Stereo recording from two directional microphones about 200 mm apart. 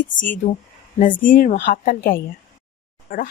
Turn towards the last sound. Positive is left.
turn(degrees=45)  # may be behind; listen again after turning